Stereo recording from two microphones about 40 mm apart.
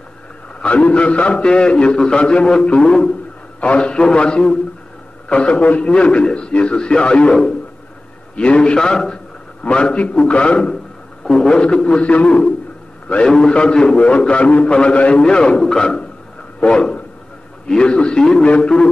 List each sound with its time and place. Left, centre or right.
0.6 s a man's voice: left
1.3 s a man's voice: left
8.4 s a man's voice: left
8.9 s a man's voice: centre